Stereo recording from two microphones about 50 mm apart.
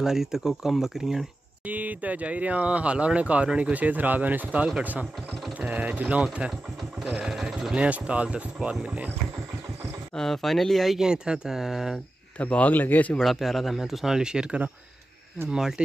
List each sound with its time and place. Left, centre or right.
0.0 s speech: centre
1.7 s speech: right
7.0 s speech: centre
7.7 s speech: right
10.1 s speech: centre
11.0 s speech: centre
12.4 s speech: left
13.2 s speech: centre